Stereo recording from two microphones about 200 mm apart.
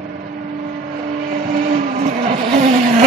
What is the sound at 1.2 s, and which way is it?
Vehicle, 45° right (ahead or behind).